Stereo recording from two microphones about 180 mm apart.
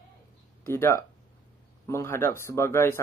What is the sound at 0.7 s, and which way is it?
Speech, 15° left (ahead or behind).